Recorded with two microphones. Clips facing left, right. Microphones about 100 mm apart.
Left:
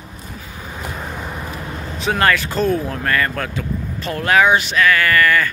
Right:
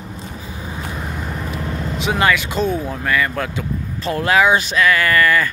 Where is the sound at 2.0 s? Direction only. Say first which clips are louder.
Left 1 dB; 15° right (ahead or behind).